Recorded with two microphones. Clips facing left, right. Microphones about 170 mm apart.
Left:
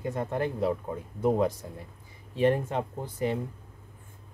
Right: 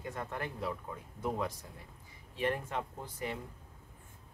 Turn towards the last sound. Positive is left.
turn(degrees=30)  # may be behind; listen again after turning